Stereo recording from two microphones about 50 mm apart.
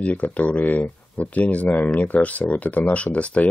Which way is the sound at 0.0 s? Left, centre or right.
Left.